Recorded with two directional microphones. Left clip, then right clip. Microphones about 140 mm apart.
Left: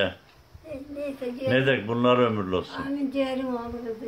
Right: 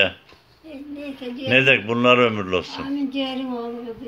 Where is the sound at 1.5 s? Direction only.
5° right (ahead or behind).